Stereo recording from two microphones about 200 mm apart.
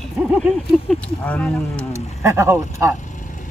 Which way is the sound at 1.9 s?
15° right (ahead or behind).